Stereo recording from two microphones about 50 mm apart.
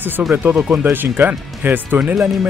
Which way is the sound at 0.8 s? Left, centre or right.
Right.